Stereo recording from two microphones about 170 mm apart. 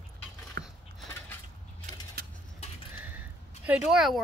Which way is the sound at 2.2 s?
65° right (ahead or behind).